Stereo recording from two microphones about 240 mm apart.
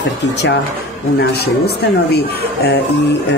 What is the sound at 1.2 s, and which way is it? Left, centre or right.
Speech, left.